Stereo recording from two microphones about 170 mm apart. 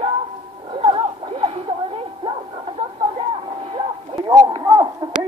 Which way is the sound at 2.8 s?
30° right (ahead or behind).